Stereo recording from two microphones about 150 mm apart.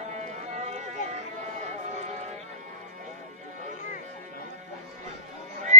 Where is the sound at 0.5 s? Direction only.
50° right (ahead or behind).